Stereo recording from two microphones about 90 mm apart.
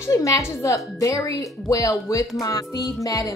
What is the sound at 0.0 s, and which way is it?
Speech, 35° left (ahead or behind).